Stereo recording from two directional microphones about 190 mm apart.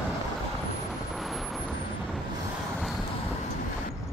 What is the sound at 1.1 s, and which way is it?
Vehicle, centre (ahead or behind).